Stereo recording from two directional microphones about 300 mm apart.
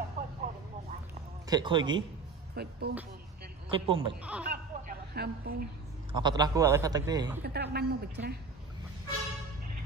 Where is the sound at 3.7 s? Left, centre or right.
Centre.